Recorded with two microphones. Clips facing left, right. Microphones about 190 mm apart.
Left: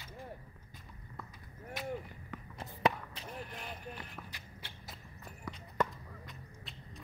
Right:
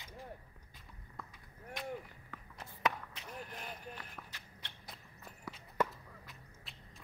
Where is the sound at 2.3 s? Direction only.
20° left (ahead or behind).